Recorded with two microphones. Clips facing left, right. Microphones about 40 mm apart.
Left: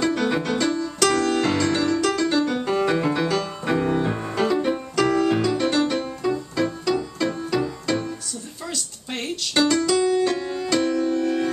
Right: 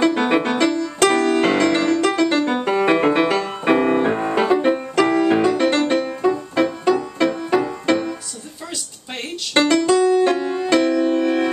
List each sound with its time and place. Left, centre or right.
0.0 s music: right
0.9 s piano: right
9.5 s music: right